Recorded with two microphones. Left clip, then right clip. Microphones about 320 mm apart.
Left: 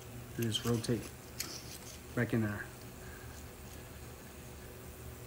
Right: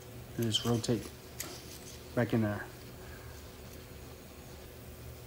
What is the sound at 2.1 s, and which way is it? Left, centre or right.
Speech, right.